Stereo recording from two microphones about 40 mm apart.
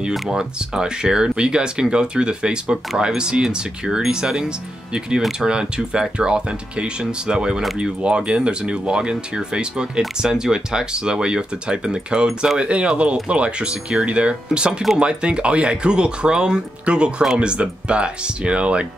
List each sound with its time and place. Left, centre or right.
0.3 s speech: centre